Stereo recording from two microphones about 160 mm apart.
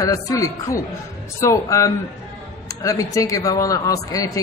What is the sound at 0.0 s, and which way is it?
A woman's voice, 20° left (ahead or behind).